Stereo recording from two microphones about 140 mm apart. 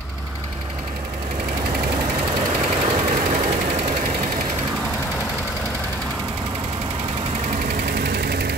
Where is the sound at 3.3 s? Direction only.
50° right (ahead or behind).